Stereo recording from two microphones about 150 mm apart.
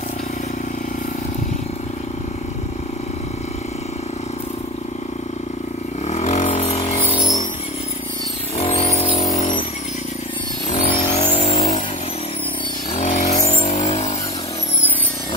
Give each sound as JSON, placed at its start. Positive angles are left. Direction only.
{"t": 6.0, "sound": "vehicle", "side_deg": 50}
{"t": 8.5, "sound": "a sound", "side_deg": 40}
{"t": 10.9, "sound": "vehicle", "side_deg": 40}
{"t": 12.9, "sound": "vehicle", "side_deg": 50}
{"t": 13.2, "sound": "vehicle", "side_deg": 70}
{"t": 13.7, "sound": "vehicle", "side_deg": 50}